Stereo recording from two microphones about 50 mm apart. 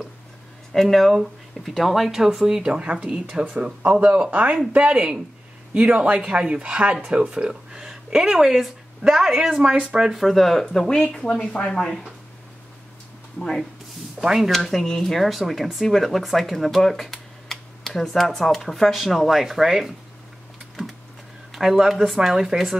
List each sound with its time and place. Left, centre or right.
0.7 s speech: centre
2.8 s speech: right
3.1 s speech: centre
10.1 s speech: centre; by 11.7 s left
13.4 s speech: centre
14.2 s speech: centre
14.5 s speech: centre
21.5 s speech: centre